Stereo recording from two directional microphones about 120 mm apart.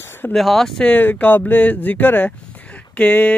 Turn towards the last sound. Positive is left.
turn(degrees=15)  # may be behind; listen again after turning